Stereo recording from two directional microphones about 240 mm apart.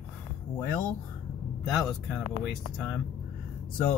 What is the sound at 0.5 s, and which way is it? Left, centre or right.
Speech, centre.